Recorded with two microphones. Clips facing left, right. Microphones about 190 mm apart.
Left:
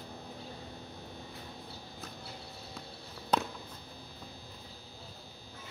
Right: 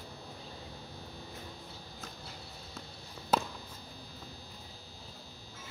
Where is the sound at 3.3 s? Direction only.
5° right (ahead or behind).